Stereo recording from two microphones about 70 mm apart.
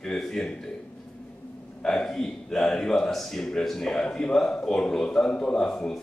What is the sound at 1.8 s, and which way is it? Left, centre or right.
A man's voice, centre.